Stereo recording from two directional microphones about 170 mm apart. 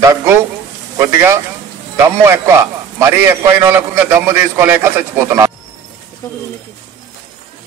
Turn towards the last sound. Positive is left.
turn(degrees=15)  # may be behind; listen again after turning